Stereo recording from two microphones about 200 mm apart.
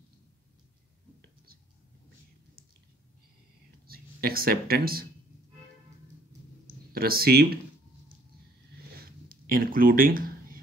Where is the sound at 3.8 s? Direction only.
50° right (ahead or behind).